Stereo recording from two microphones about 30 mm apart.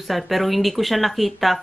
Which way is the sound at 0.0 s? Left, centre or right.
Centre.